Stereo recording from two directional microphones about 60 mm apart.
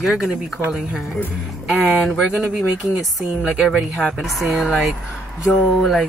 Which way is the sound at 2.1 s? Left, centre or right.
Centre.